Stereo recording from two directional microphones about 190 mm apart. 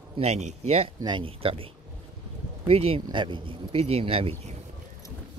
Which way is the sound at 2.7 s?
30° right (ahead or behind).